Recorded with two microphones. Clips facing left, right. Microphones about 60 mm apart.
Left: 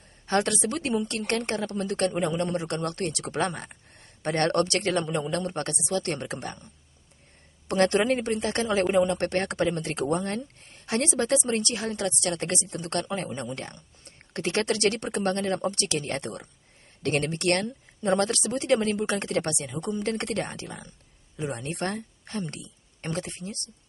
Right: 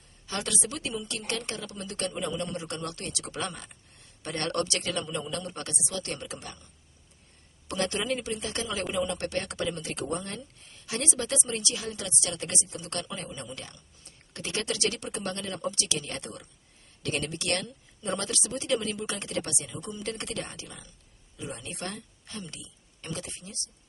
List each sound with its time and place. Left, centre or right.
0.3 s a woman's voice: left